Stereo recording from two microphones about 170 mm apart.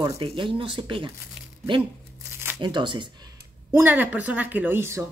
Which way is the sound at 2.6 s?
25° right (ahead or behind).